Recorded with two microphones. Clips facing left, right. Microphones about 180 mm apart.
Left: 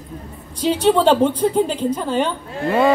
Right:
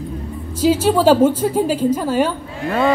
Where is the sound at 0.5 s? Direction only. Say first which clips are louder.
Right 1 dB; 5° right (ahead or behind).